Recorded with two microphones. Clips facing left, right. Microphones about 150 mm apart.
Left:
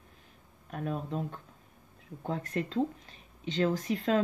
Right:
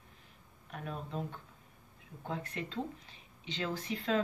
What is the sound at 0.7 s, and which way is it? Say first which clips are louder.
Speech: left 7 dB; 40° left (ahead or behind).